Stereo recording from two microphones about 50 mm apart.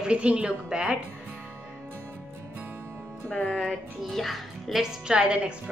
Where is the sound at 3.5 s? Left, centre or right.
Centre.